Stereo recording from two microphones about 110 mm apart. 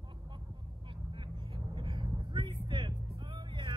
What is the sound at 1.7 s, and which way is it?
Vehicle, 50° right (ahead or behind).